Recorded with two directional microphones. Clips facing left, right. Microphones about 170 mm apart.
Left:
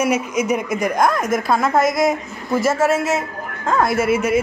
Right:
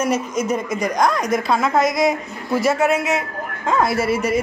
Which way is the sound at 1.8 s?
50° left (ahead or behind).